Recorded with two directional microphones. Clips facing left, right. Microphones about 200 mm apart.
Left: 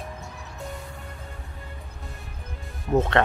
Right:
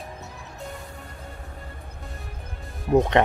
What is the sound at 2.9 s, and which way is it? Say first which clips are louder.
Speech: right 3 dB; 15° right (ahead or behind).